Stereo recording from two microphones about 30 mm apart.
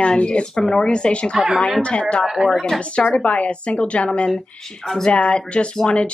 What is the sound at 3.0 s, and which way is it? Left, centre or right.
A woman's voice, left.